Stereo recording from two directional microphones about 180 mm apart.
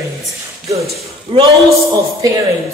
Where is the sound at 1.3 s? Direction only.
30° right (ahead or behind).